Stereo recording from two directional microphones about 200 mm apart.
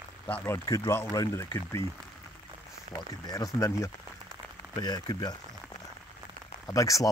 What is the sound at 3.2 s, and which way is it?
Speech, 15° left (ahead or behind).